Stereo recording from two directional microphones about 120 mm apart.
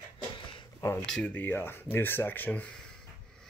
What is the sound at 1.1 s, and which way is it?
Speech, 10° left (ahead or behind).